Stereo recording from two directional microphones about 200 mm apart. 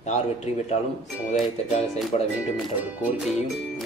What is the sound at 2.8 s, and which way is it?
Speech, 10° right (ahead or behind).